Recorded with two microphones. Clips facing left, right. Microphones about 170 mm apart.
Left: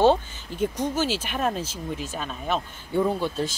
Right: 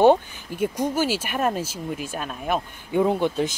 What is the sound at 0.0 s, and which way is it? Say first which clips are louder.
Speech: right 3 dB; 15° right (ahead or behind).